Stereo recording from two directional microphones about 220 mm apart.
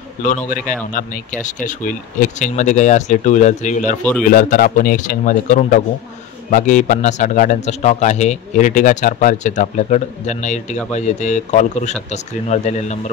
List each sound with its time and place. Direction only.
0.9 s a man's voice: 35° left (ahead or behind)